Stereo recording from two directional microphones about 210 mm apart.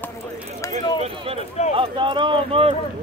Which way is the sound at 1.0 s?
25° right (ahead or behind).